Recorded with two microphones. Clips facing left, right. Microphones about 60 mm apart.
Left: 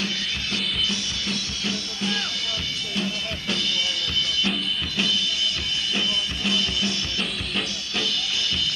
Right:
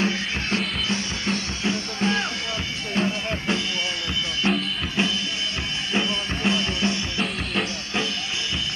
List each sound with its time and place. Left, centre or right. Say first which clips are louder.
0.0 s drum: right 4 dB; right
4.4 s music: right 2 dB; right
5.9 s drum: right 5 dB; right